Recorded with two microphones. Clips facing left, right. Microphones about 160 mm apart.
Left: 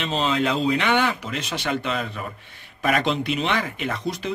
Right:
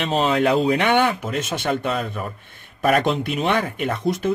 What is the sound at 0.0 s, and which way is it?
Speech, 55° right (ahead or behind).